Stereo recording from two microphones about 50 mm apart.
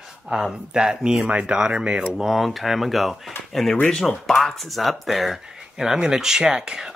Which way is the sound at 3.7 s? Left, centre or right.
Centre.